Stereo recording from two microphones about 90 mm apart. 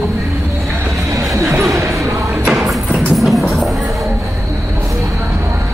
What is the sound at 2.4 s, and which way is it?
Music, 5° right (ahead or behind).